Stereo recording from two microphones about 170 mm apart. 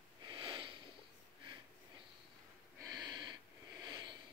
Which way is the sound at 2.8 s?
25° right (ahead or behind).